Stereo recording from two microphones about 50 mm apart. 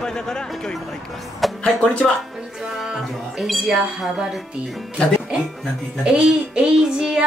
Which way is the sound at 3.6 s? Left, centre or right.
Centre.